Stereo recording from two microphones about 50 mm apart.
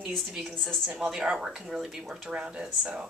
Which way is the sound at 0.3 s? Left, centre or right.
Centre.